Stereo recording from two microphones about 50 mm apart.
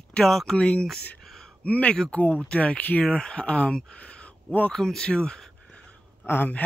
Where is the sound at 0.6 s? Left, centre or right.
Left.